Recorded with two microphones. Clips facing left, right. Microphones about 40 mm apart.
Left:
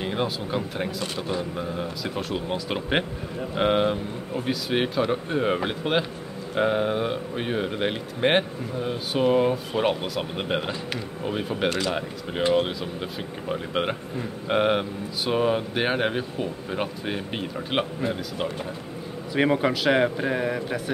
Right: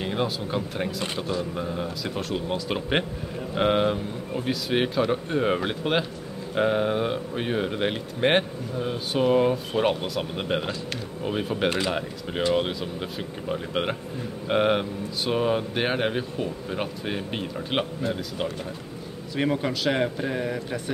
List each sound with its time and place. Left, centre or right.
0.0 s speech: centre
13.5 s speech: centre
19.3 s a man's voice: centre